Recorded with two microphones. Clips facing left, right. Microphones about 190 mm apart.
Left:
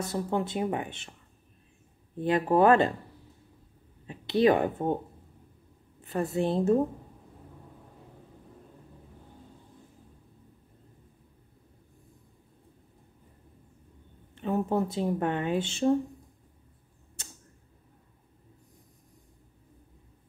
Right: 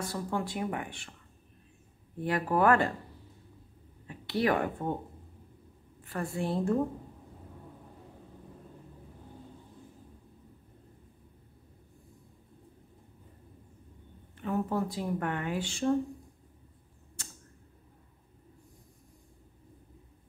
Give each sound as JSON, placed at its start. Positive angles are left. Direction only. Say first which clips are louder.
{"t": 0.0, "sound": "speech", "louder": "left 4 dB", "side_deg": 20}
{"t": 2.1, "sound": "speech", "louder": "left 5 dB", "side_deg": 20}
{"t": 4.1, "sound": "speech", "louder": "left 6 dB", "side_deg": 20}
{"t": 5.9, "sound": "a woman's voice", "louder": "left 6 dB", "side_deg": 20}
{"t": 14.3, "sound": "speech", "louder": "left 3 dB", "side_deg": 25}
{"t": 17.2, "sound": "tick-tock", "louder": "even", "side_deg": 20}